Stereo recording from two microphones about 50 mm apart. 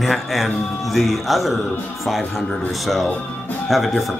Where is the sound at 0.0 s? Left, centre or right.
Centre.